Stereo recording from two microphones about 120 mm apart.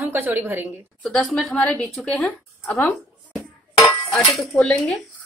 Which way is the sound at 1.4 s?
5° left (ahead or behind).